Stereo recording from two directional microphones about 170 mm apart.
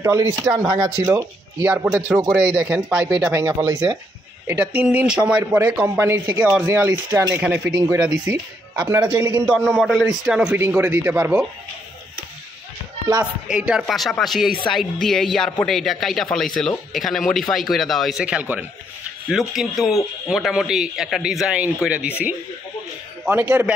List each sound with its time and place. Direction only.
0.0 s speech: 15° right (ahead or behind)
8.8 s speech: 10° right (ahead or behind)
9.1 s a man's voice: 25° right (ahead or behind)
9.5 s a man's voice: centre (ahead or behind)
13.2 s a man's voice: 5° right (ahead or behind)